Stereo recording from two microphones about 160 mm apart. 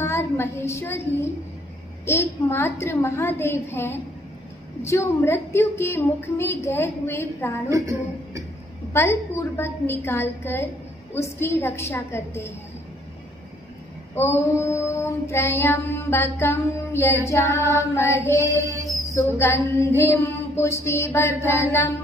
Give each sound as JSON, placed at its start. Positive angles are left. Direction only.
{"t": 0.0, "sound": "a woman's voice", "side_deg": 15}
{"t": 2.0, "sound": "child singing", "side_deg": 15}
{"t": 7.7, "sound": "a woman's voice", "side_deg": -20}
{"t": 8.9, "sound": "child singing", "side_deg": 15}
{"t": 14.1, "sound": "child singing", "side_deg": 15}
{"t": 18.6, "sound": "a sound", "side_deg": -20}
{"t": 19.1, "sound": "child singing", "side_deg": 15}